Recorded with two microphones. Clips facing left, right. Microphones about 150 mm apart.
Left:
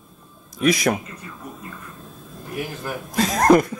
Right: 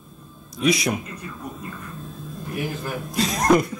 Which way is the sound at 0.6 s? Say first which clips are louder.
Left 2 dB; 50° left (ahead or behind).